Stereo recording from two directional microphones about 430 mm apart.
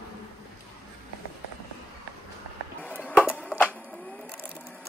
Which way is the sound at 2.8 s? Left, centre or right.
Centre.